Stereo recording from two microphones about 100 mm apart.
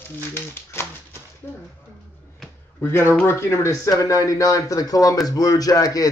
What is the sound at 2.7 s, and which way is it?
Speech, 25° left (ahead or behind).